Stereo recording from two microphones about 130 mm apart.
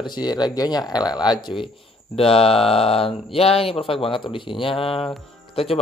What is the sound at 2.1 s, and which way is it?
Speech, 45° left (ahead or behind).